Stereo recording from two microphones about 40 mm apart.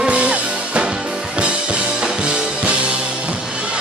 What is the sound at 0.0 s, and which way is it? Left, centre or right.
Music, right.